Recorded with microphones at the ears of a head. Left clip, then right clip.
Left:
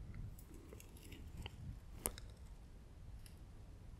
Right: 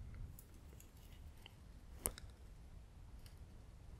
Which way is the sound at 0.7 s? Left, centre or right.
Left.